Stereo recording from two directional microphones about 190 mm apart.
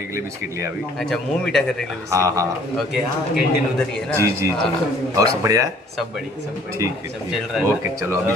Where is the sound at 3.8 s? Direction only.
5° left (ahead or behind).